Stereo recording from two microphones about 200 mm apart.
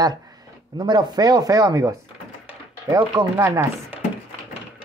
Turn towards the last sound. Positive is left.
turn(degrees=-15)  # may be behind; listen again after turning